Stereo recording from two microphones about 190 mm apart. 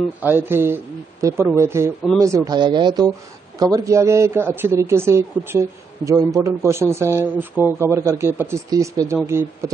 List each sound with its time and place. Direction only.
0.2 s speech: 10° right (ahead or behind)